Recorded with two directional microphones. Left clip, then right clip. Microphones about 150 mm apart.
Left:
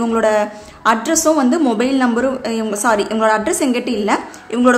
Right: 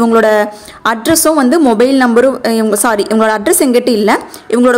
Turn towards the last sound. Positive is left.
turn(degrees=-45)  # may be behind; listen again after turning